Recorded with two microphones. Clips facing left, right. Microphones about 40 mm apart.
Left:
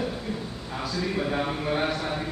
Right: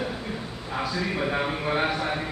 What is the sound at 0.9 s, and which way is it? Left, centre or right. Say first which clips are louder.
A man's voice: left 1 dB; right.